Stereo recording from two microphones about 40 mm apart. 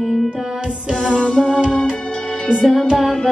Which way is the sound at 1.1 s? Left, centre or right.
Left.